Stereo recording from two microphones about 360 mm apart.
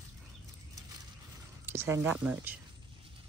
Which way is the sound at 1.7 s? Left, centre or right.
Centre.